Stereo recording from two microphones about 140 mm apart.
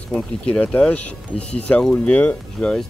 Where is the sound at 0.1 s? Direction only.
10° left (ahead or behind).